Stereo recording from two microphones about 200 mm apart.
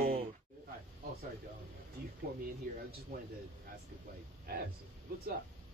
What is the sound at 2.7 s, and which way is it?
Speech, 45° right (ahead or behind).